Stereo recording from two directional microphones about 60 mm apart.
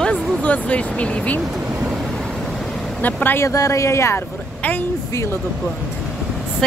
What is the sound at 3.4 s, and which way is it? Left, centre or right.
Speech, left.